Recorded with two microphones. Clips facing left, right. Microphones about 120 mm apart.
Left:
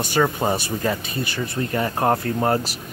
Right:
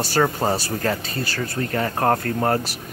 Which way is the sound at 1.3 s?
15° left (ahead or behind).